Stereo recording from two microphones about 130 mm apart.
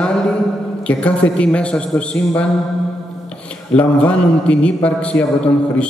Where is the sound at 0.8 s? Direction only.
10° left (ahead or behind).